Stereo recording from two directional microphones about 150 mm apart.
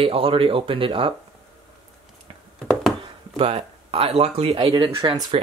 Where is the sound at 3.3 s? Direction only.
40° right (ahead or behind).